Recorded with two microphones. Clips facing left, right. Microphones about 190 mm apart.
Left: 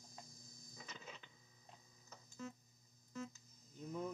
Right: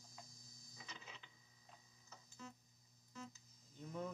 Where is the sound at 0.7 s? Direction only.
45° left (ahead or behind).